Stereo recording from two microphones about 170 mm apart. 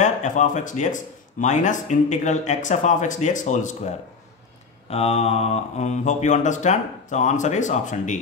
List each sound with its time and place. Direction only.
0.0 s speech: 45° left (ahead or behind)